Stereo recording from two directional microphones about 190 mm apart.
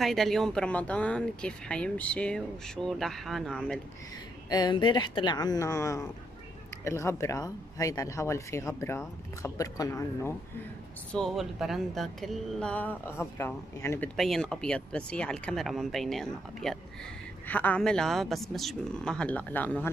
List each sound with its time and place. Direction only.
0.0 s speech: centre (ahead or behind)
4.5 s speech: 20° left (ahead or behind)
11.1 s speech: centre (ahead or behind)